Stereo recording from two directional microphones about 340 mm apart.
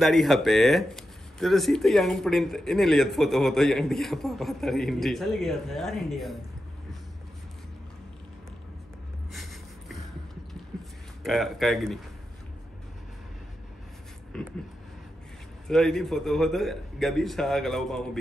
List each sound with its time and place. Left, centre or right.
0.0 s speech: centre
9.3 s a sound: centre
11.2 s speech: centre
14.3 s speech: centre
15.6 s speech: centre